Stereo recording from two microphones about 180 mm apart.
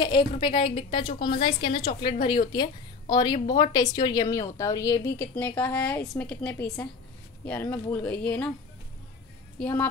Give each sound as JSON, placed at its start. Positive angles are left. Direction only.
{"t": 0.0, "sound": "a woman's voice", "side_deg": 25}
{"t": 7.7, "sound": "a woman's voice", "side_deg": 5}
{"t": 9.6, "sound": "speech", "side_deg": 10}